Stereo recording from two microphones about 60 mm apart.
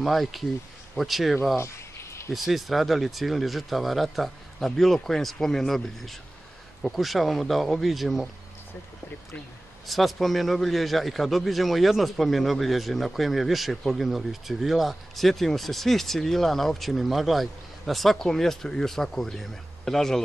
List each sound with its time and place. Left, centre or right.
0.0 s a man's voice: centre
1.6 s a sound: left
2.3 s a man's voice: centre
9.8 s a man's voice: centre